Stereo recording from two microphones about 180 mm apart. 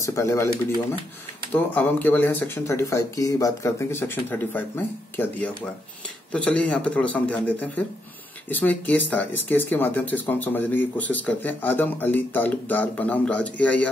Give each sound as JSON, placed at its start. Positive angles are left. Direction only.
{"t": 0.0, "sound": "speech", "side_deg": 15}